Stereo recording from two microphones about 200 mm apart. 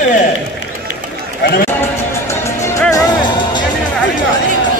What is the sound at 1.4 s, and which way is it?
Speech, 50° left (ahead or behind).